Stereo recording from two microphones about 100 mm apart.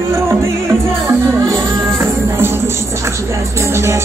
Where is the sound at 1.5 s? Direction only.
25° right (ahead or behind).